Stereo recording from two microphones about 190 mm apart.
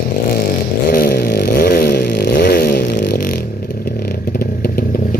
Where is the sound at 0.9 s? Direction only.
50° left (ahead or behind).